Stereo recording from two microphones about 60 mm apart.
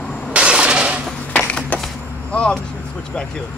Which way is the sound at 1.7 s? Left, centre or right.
Left.